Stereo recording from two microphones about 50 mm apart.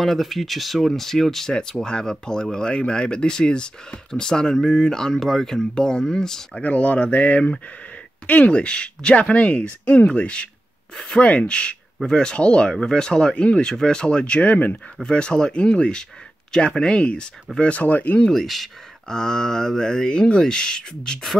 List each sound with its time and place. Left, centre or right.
0.0 s speech: centre
6.6 s speech: left
9.3 s speech: left
18.3 s speech: centre